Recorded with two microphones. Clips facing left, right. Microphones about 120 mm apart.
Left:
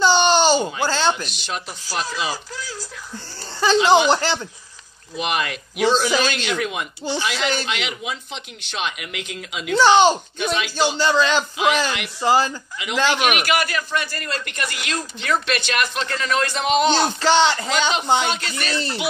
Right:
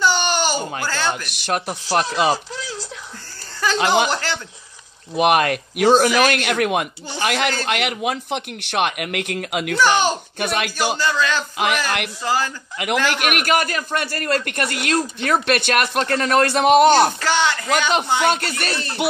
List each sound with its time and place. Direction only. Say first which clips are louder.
0.0 s a sound: left 4 dB; 25° left (ahead or behind)
1.1 s speech: right 5 dB; 55° right (ahead or behind)
3.7 s speech: left 3 dB; 55° right (ahead or behind)
4.1 s a man's voice: left 5 dB; 20° left (ahead or behind)
5.1 s speech: right 8 dB; 60° right (ahead or behind)
9.8 s a man's voice: left 4 dB; 25° left (ahead or behind)
10.5 s speech: left 1 dB; 60° right (ahead or behind)
11.0 s a man's voice: left 5 dB; 25° left (ahead or behind)
11.5 s speech: left 1 dB; 60° right (ahead or behind)
12.2 s a man's voice: left 7 dB; 20° left (ahead or behind)
12.7 s speech: right 1 dB; 60° right (ahead or behind); by 14.0 s 40° right (ahead or behind)
14.0 s speech: right 7 dB; 55° right (ahead or behind)
17.2 s a man's voice: left 3 dB; 25° left (ahead or behind)
18.2 s speech: right 5 dB; 50° right (ahead or behind)